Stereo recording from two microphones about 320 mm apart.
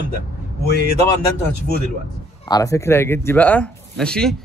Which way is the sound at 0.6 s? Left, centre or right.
Left.